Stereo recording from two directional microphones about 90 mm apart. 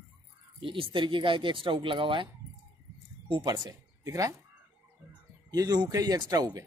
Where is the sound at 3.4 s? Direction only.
50° right (ahead or behind).